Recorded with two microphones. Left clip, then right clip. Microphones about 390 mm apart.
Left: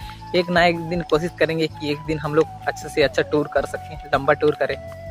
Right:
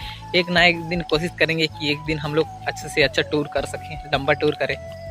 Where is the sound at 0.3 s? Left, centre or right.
Right.